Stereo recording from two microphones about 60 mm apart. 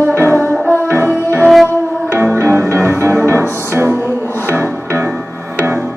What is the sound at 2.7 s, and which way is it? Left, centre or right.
Music, right.